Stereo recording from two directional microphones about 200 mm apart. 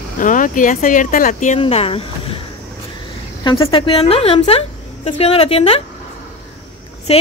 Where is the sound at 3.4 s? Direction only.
25° left (ahead or behind).